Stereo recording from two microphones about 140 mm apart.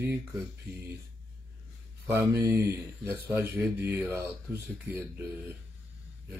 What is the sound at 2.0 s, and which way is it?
Speech, 20° right (ahead or behind).